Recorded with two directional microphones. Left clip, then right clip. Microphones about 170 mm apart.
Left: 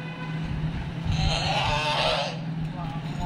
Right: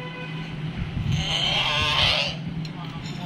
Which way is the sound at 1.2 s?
10° left (ahead or behind).